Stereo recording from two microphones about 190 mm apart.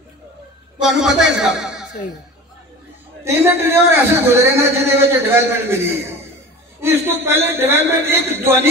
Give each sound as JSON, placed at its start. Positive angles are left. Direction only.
{"t": 0.7, "sound": "a man's voice", "side_deg": -5}
{"t": 3.3, "sound": "a man's voice", "side_deg": -15}